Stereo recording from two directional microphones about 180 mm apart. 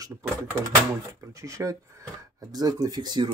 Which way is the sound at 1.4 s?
15° right (ahead or behind).